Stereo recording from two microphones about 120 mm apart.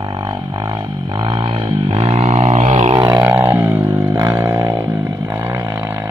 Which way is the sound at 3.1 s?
20° right (ahead or behind).